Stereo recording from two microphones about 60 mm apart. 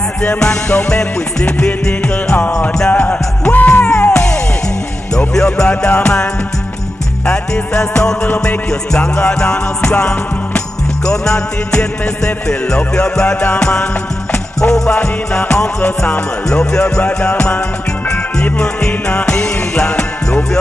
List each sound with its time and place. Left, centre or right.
0.2 s music: centre
5.7 s music: left
7.2 s music: centre